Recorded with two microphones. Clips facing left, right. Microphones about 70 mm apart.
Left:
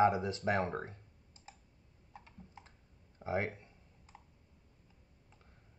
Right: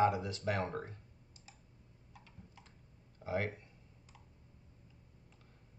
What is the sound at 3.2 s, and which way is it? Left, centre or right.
Speech, left.